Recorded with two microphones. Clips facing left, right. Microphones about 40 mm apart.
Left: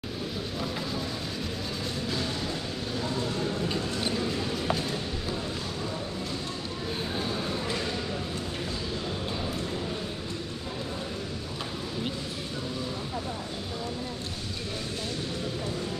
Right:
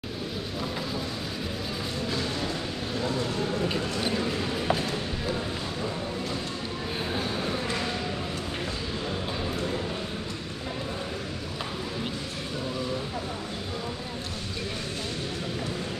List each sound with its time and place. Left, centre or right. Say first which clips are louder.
2.0 s music: right 2 dB; centre
3.0 s vehicle: right 2 dB; centre
3.5 s a sound: right 2 dB; centre
7.2 s train: right 1 dB; centre